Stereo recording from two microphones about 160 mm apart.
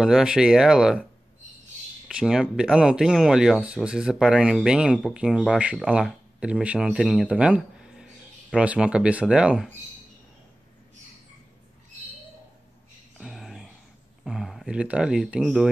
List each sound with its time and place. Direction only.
0.0 s speech: 5° right (ahead or behind)
2.0 s speech: 5° right (ahead or behind)
13.2 s a sound: centre (ahead or behind)
14.2 s speech: centre (ahead or behind)